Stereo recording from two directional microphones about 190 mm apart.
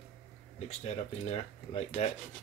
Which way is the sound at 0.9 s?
30° left (ahead or behind).